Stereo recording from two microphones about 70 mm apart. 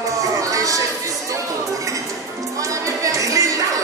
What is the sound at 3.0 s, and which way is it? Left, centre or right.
Music, right.